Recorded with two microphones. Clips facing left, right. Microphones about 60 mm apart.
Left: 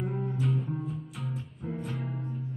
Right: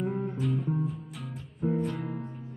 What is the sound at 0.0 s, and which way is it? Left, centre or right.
Music, centre.